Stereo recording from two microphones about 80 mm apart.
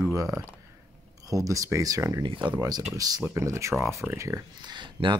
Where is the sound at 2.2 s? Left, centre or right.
Right.